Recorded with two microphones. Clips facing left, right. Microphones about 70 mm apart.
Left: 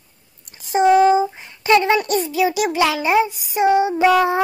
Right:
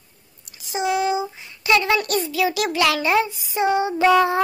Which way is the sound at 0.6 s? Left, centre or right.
Left.